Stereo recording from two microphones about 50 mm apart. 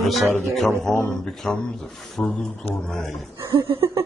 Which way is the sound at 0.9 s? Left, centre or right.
Centre.